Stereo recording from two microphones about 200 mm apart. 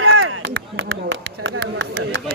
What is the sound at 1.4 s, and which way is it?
Speech, 60° right (ahead or behind).